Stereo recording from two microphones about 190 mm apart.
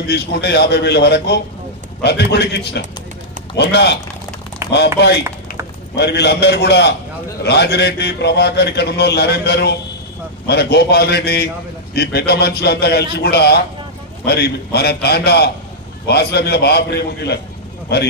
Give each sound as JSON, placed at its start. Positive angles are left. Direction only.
{"t": 0.1, "sound": "speech", "side_deg": 60}
{"t": 4.6, "sound": "a sound", "side_deg": -15}
{"t": 5.0, "sound": "speech", "side_deg": 65}